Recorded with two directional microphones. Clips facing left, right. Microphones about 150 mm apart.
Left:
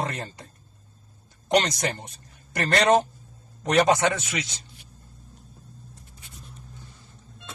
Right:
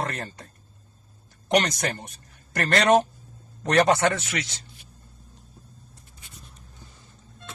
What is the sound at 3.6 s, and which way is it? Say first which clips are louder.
Speech: even; 10° left (ahead or behind).